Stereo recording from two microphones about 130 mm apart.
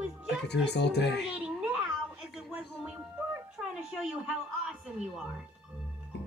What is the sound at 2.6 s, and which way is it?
Music, 5° right (ahead or behind).